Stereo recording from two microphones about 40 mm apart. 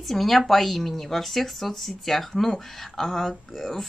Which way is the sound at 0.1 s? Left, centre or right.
Centre.